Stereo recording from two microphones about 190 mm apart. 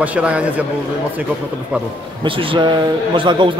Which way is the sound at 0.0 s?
5° right (ahead or behind).